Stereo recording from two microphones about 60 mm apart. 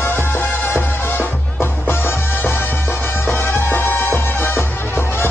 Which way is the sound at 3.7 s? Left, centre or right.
Left.